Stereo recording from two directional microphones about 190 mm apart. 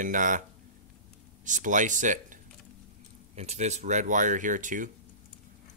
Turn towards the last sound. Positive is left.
turn(degrees=-45)  # may be behind; listen again after turning